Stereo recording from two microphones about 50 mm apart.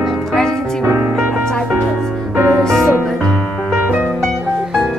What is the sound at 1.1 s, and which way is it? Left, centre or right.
Music, centre.